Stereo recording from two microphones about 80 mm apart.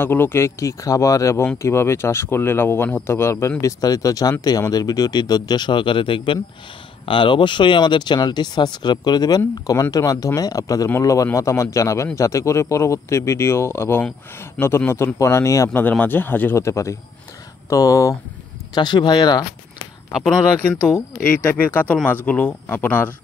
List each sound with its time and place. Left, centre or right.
0.0 s speech: left
3.8 s speech: left
9.7 s speech: left
14.6 s speech: centre
15.1 s speech: left
15.7 s speech: left
16.5 s speech: left
18.8 s speech: left
21.2 s speech: centre